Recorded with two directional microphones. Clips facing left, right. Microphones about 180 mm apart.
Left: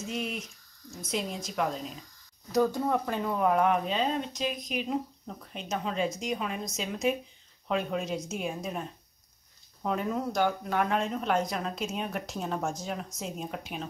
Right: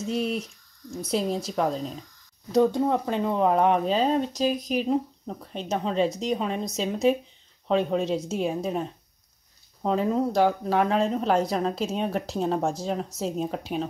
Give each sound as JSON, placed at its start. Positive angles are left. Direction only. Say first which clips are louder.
{"t": 0.1, "sound": "speech", "louder": "right 8 dB", "side_deg": -35}
{"t": 2.5, "sound": "speech", "louder": "right 5 dB", "side_deg": -25}
{"t": 9.8, "sound": "speech", "louder": "right 6 dB", "side_deg": -30}